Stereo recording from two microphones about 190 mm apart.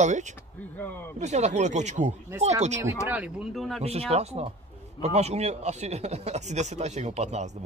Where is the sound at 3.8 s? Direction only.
35° right (ahead or behind).